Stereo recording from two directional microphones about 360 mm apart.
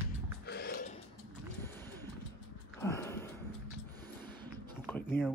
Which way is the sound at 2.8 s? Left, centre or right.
Centre.